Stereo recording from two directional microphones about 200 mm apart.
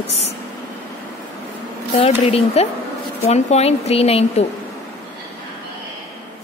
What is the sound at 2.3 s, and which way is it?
Speech, 30° left (ahead or behind).